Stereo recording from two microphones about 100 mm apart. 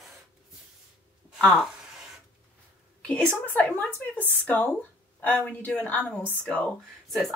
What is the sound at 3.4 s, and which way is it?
Speech, 15° left (ahead or behind).